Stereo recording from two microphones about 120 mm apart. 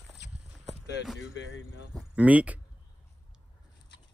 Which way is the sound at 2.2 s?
10° right (ahead or behind).